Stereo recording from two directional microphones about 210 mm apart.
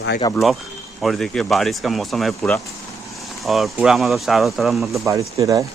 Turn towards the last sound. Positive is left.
turn(degrees=-15)  # may be behind; listen again after turning